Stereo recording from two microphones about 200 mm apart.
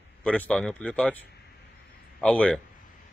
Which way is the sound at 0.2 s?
5° left (ahead or behind).